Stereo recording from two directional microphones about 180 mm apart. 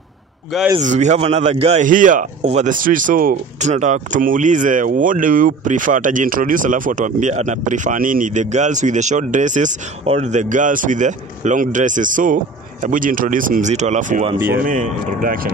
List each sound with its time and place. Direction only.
0.7 s a man's voice: 40° right (ahead or behind)